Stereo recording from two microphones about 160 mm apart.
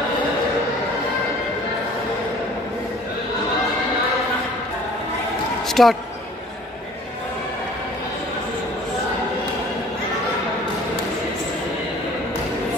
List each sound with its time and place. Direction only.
5.7 s speech: centre (ahead or behind)